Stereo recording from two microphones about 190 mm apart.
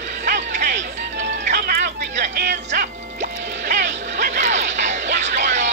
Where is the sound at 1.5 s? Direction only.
55° right (ahead or behind); by 3.8 s 40° right (ahead or behind).